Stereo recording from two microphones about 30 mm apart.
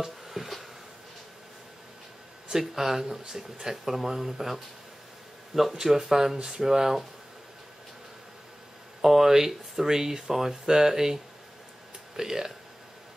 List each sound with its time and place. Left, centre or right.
0.0 s a sound: centre
2.7 s speech: centre
5.8 s speech: centre
9.0 s speech: centre
12.2 s speech: centre